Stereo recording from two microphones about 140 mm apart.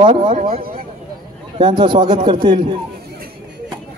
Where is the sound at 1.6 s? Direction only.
35° right (ahead or behind).